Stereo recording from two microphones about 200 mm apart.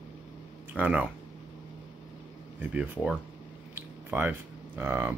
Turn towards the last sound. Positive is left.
turn(degrees=-10)  # may be behind; listen again after turning